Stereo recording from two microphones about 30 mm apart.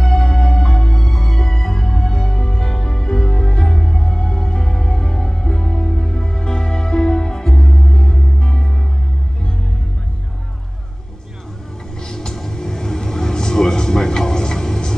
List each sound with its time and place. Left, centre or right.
0.0 s music: centre
12.0 s music: left
12.5 s vehicle: left